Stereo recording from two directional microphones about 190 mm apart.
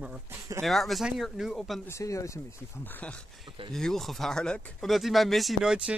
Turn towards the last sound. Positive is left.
turn(degrees=-5)  # may be behind; listen again after turning